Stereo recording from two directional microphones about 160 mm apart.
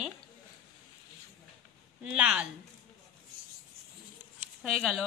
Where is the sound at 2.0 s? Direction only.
5° right (ahead or behind).